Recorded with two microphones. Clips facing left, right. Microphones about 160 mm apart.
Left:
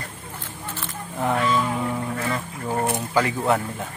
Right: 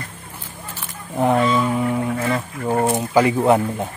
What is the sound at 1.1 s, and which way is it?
Speech, 30° right (ahead or behind).